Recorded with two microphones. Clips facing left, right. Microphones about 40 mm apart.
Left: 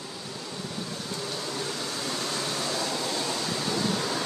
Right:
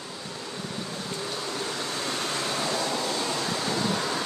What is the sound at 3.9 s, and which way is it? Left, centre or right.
Waves, centre.